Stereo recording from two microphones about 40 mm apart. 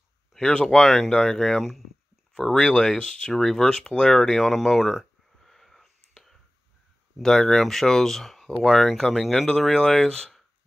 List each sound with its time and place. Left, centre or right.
0.4 s speech: left
0.7 s speech: centre
4.0 s a sound: centre
7.2 s speech: centre